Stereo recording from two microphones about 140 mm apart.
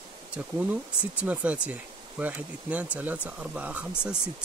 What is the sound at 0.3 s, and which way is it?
Speech, 10° right (ahead or behind).